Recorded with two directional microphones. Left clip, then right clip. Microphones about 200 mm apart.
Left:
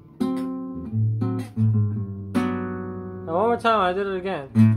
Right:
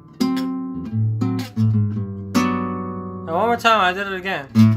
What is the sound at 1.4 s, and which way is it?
Guitar, 25° right (ahead or behind).